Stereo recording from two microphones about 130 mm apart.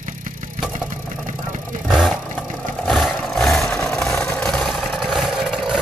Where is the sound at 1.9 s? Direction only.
Centre (ahead or behind).